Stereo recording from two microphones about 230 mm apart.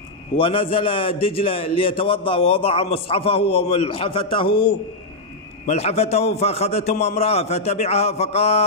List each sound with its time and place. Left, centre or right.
0.4 s a man's voice: left